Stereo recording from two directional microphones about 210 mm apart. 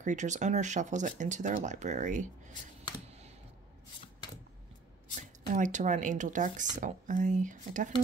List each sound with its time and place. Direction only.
0.0 s speech: 35° right (ahead or behind)
5.1 s speech: 35° right (ahead or behind)